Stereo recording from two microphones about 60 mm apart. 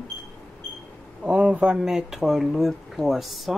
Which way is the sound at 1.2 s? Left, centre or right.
Right.